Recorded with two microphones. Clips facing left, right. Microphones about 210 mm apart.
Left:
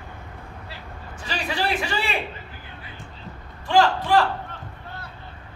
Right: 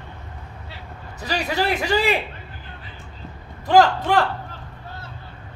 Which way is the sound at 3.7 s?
45° right (ahead or behind).